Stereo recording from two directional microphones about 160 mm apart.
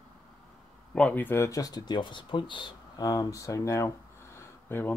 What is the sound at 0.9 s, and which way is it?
Speech, 10° left (ahead or behind).